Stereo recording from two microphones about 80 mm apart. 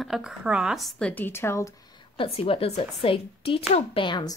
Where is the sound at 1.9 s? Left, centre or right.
Left.